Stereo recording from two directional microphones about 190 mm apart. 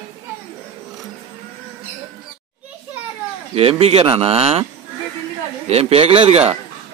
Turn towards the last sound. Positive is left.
turn(degrees=-30)  # may be behind; listen again after turning